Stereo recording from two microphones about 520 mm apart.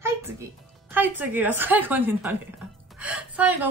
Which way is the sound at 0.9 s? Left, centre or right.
Centre.